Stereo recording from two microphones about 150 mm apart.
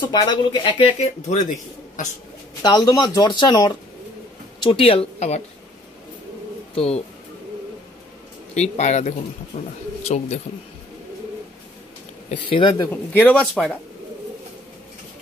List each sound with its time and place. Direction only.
0.0 s speech: 30° left (ahead or behind); by 1.4 s 50° left (ahead or behind)
2.6 s speech: 25° left (ahead or behind); by 5.4 s 45° left (ahead or behind)
6.7 s speech: 40° left (ahead or behind)
8.5 s speech: 50° left (ahead or behind)
10.0 s speech: 45° left (ahead or behind)
12.5 s speech: 35° left (ahead or behind)
12.9 s speech: 10° left (ahead or behind)